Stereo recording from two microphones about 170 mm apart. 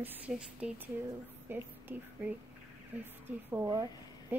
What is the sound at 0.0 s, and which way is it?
A woman's voice, 10° right (ahead or behind).